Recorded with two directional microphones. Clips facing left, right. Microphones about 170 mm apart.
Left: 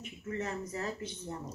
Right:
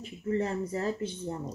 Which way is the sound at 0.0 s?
35° right (ahead or behind).